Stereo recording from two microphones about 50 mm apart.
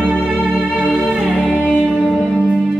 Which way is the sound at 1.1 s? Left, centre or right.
Centre.